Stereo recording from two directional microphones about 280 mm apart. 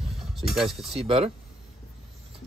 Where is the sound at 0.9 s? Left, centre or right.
Right.